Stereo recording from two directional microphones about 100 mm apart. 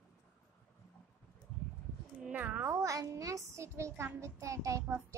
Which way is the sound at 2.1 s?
15° right (ahead or behind).